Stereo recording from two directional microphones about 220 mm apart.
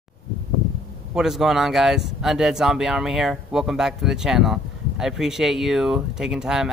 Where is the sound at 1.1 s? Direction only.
Centre (ahead or behind).